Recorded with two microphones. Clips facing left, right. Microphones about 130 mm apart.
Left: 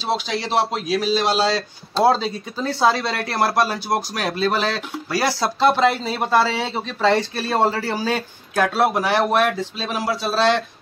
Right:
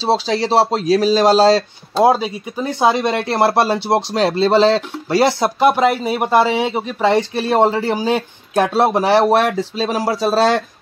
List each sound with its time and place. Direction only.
0.0 s speech: 35° right (ahead or behind)
2.0 s speech: 10° right (ahead or behind); by 10.6 s 40° right (ahead or behind)